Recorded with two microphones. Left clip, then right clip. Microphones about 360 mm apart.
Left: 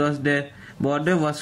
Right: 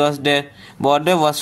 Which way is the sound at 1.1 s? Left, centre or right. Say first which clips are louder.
Right 7 dB; right.